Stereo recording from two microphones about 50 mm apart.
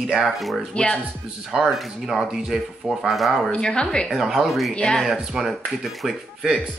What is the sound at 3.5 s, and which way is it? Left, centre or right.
Speech, centre.